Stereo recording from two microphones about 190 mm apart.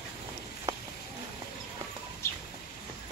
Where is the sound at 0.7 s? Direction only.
15° right (ahead or behind).